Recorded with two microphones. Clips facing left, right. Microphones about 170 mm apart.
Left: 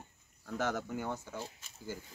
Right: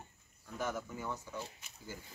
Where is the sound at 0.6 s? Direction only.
80° left.